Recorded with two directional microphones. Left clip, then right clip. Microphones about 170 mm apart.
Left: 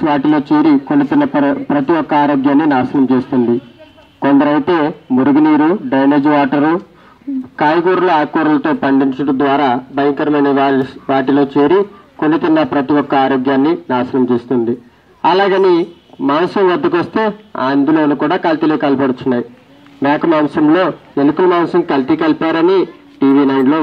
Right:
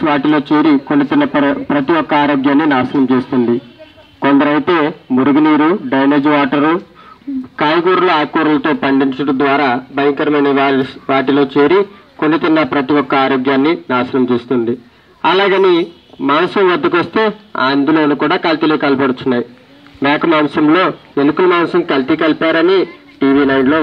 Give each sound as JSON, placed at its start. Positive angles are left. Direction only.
{"t": 0.0, "sound": "a man's voice", "side_deg": 25}